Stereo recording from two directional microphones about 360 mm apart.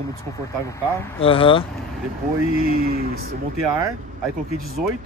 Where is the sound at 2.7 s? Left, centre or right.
Right.